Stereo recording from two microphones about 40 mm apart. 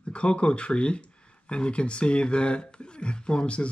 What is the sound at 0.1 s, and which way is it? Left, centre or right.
Speech, left.